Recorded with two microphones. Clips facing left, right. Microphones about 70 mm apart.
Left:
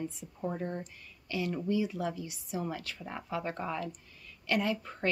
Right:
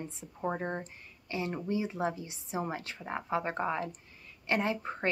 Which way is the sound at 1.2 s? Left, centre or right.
Right.